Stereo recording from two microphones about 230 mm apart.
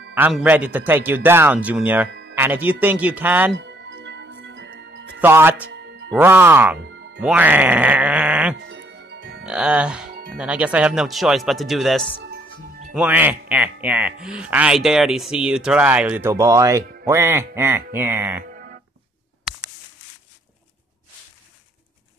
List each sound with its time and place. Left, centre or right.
0.1 s a man's voice: centre
2.0 s music: right
2.3 s a man's voice: centre
3.5 s music: right
5.2 s a man's voice: centre
5.7 s music: right
6.1 s a man's voice: centre
6.8 s music: right
7.2 s speech: centre
8.5 s music: right
9.4 s a man's voice: centre
18.5 s music: right